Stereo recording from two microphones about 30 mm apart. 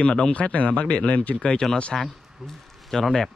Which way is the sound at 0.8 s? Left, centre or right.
Left.